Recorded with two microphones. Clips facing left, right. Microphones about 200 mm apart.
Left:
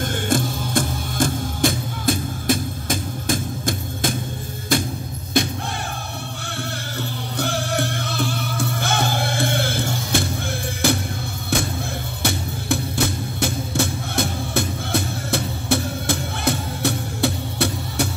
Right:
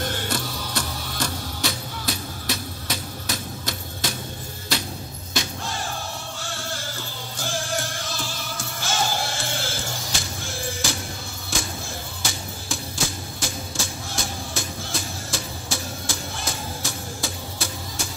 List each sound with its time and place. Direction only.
0.0 s music: 50° left (ahead or behind)
7.0 s music: 60° left (ahead or behind)
11.5 s a sound: 60° left (ahead or behind)
12.2 s music: 60° left (ahead or behind)